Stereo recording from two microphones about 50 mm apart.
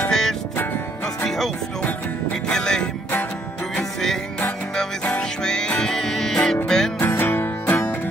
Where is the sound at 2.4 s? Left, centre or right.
Centre.